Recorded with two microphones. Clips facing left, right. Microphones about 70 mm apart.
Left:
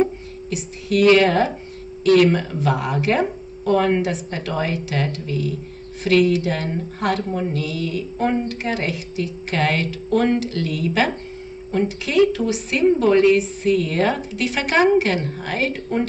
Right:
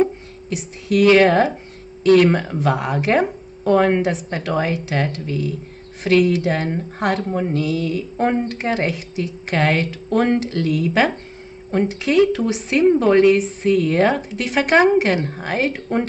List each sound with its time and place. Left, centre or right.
0.5 s a woman's voice: right
2.3 s a woman's voice: right